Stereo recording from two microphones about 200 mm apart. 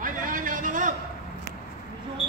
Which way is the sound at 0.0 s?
40° right (ahead or behind).